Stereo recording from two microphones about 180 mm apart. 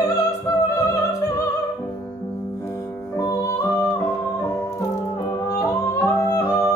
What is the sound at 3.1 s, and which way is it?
Music, 20° left (ahead or behind).